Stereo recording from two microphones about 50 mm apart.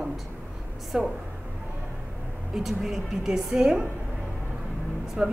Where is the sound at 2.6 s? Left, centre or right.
Centre.